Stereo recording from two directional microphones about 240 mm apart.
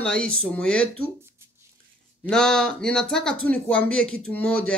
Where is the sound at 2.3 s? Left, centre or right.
Centre.